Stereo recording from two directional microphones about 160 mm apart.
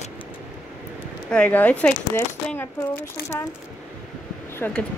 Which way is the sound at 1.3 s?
10° left (ahead or behind).